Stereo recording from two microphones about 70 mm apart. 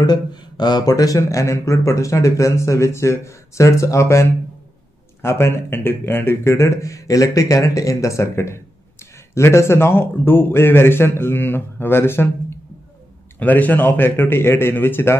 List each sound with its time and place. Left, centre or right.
0.0 s speech: left
13.4 s speech: left